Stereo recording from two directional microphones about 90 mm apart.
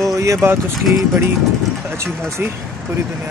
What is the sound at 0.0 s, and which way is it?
Vehicle, 35° right (ahead or behind).